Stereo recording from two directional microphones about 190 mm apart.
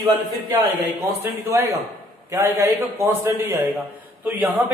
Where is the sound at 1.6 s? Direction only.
15° right (ahead or behind).